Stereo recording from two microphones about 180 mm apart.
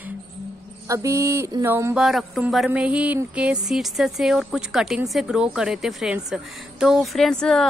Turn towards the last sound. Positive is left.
turn(degrees=5)  # may be behind; listen again after turning